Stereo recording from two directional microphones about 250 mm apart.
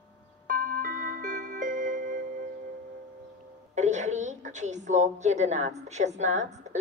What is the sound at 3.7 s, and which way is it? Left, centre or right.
A woman's voice, right.